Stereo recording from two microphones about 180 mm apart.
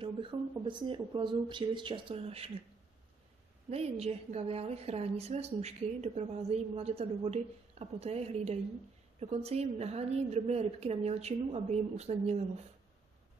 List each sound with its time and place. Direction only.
0.0 s speech: 30° right (ahead or behind)
3.7 s a woman's voice: 35° right (ahead or behind)